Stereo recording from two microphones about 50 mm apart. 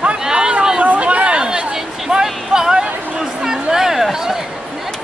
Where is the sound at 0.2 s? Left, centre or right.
Centre.